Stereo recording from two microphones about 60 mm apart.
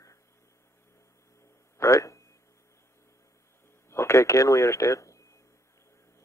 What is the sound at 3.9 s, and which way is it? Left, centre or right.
Speech, left.